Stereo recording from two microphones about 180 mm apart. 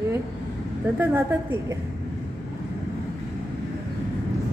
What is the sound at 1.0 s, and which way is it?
Speech, 10° right (ahead or behind).